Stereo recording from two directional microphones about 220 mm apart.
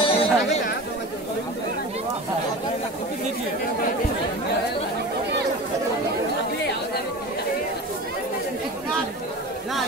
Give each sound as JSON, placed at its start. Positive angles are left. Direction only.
{"t": 0.0, "sound": "chatter", "side_deg": 25}